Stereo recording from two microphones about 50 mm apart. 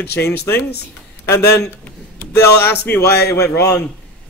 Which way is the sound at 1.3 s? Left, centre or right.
Left.